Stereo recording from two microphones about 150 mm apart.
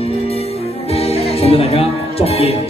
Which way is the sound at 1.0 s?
40° left (ahead or behind).